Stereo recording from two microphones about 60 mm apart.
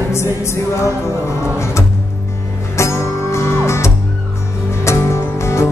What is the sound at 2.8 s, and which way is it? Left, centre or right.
Music, left.